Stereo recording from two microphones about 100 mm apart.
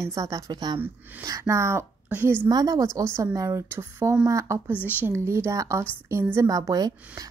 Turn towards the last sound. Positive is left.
turn(degrees=-40)  # may be behind; listen again after turning